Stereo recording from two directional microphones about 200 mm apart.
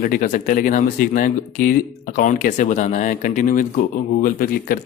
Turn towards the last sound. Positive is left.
turn(degrees=45)  # may be behind; listen again after turning